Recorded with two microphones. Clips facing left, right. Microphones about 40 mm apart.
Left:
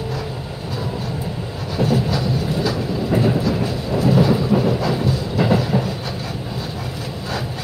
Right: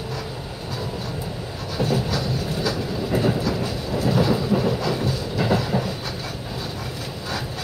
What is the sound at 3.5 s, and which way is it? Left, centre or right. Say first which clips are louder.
Train: left 4 dB; left.